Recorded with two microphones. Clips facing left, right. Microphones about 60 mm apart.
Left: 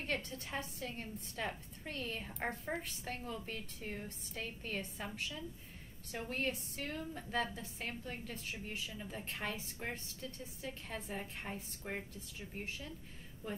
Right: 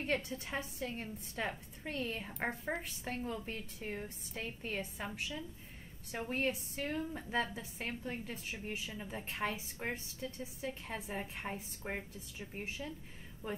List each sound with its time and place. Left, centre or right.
0.0 s a woman's voice: centre